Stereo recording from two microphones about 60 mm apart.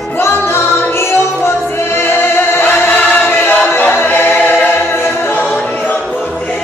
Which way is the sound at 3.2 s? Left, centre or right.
Left.